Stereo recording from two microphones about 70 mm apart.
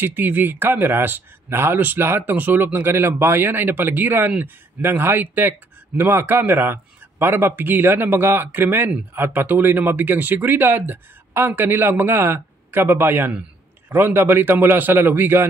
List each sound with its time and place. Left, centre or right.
0.0 s speech: right